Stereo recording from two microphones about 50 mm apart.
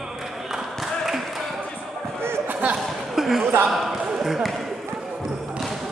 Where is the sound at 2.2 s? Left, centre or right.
Right.